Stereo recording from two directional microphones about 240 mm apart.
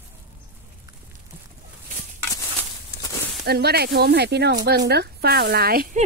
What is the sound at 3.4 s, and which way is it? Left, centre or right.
Speech, right.